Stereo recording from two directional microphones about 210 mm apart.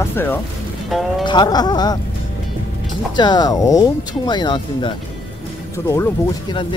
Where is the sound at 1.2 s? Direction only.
20° left (ahead or behind).